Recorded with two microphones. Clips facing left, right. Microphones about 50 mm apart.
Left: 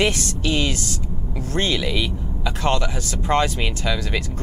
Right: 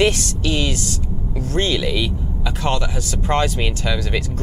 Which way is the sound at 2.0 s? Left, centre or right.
Left.